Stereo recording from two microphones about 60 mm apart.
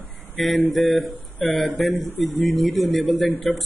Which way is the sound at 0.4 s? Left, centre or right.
Centre.